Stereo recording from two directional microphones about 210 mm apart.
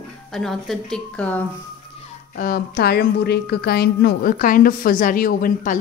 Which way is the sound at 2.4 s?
45° left (ahead or behind).